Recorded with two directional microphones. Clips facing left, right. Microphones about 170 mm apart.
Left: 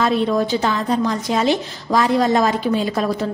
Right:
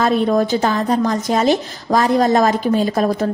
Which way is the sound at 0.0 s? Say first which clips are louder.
Right 2 dB; 50° right (ahead or behind).